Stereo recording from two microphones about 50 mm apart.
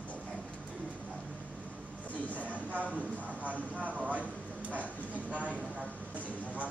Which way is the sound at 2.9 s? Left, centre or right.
Right.